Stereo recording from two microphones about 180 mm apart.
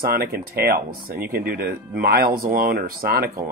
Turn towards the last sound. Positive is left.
turn(degrees=-55)  # may be behind; listen again after turning